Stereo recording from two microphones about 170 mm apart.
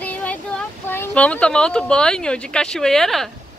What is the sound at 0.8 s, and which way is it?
Speech, 10° left (ahead or behind).